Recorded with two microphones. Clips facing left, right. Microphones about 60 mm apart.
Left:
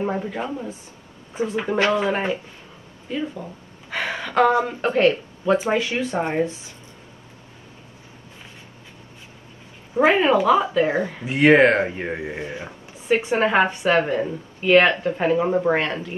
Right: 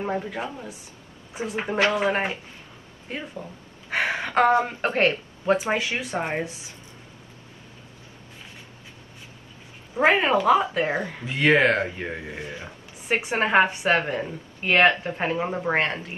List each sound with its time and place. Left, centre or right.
0.0 s a woman's voice: centre
1.4 s speech: right
3.1 s speech: right
3.9 s speech: right
5.7 s speech: right
10.0 s speech: right
11.2 s speech: left
13.3 s speech: right
14.0 s speech: centre
14.6 s speech: right
15.4 s speech: centre
15.7 s speech: right